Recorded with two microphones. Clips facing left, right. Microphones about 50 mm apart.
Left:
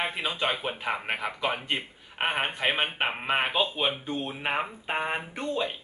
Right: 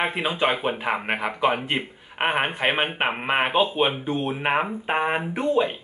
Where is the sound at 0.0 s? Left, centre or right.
Right.